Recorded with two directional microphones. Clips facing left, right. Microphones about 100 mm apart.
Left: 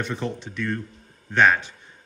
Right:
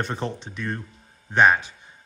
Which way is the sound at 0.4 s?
20° right (ahead or behind).